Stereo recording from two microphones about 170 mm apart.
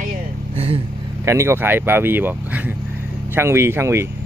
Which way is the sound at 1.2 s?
15° right (ahead or behind).